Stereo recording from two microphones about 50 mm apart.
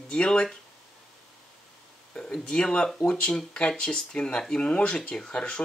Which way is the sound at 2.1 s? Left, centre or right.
Centre.